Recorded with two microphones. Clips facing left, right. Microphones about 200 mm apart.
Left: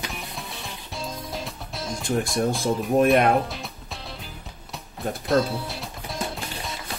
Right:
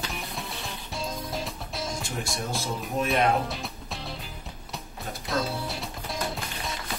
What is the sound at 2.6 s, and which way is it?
Speech, 55° left (ahead or behind).